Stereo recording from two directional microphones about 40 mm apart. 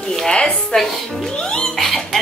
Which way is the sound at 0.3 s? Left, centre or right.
Left.